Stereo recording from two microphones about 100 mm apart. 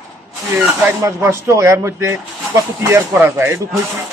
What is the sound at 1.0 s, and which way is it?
A man's voice, 30° right (ahead or behind).